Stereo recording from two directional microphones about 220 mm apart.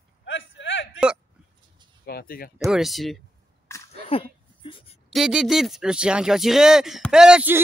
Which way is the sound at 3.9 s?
25° left (ahead or behind).